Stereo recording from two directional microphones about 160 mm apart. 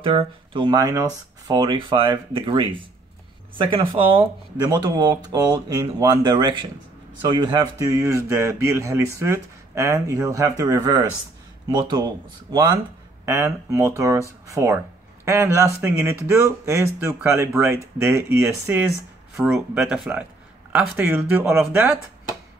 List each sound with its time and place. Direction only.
0.0 s speech: 35° right (ahead or behind)
13.2 s speech: 20° right (ahead or behind)